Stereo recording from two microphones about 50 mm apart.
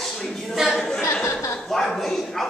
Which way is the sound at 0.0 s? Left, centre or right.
Centre.